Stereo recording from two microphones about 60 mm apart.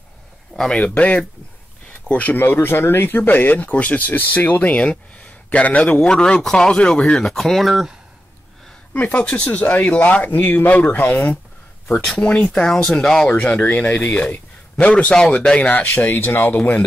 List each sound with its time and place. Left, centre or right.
0.6 s speech: centre
8.9 s speech: left
11.9 s speech: centre
12.8 s speech: centre
13.3 s speech: left
15.1 s speech: centre
15.8 s speech: left